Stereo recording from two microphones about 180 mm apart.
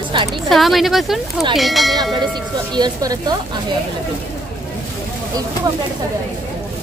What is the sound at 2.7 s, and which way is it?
Speech, 20° right (ahead or behind).